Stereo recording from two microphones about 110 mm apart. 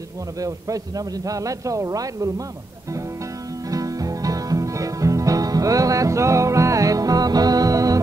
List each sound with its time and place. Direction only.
0.4 s a man's voice: 30° right (ahead or behind)
3.7 s music: 30° right (ahead or behind)